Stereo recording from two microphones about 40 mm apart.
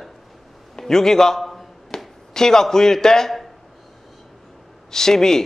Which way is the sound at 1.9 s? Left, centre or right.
Centre.